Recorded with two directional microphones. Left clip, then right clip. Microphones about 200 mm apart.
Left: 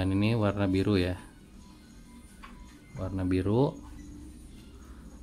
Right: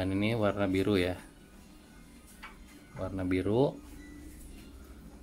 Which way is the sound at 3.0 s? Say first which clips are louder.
Left 1 dB; 10° left (ahead or behind).